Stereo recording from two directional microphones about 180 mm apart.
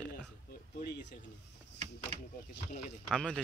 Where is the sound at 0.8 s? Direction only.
65° left (ahead or behind).